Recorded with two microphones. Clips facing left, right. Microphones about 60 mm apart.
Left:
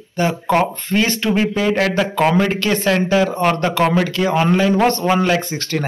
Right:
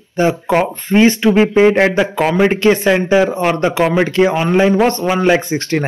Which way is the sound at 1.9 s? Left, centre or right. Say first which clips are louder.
Right 1 dB; centre.